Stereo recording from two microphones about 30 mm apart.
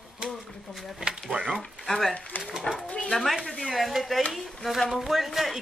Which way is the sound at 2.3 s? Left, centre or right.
Left.